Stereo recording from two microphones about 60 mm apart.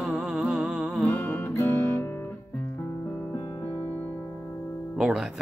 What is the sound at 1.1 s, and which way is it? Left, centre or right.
Music, left.